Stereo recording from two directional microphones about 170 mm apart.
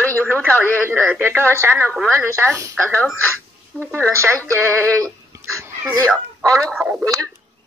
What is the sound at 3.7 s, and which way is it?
Speech, 5° left (ahead or behind).